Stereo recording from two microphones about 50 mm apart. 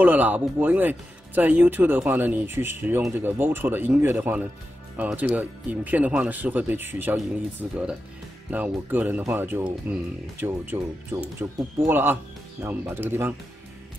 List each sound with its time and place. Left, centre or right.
0.0 s speech: right
2.4 s a man's voice: right
4.9 s speech: right
7.6 s speech: right
9.9 s speech: right
10.4 s a man's voice: right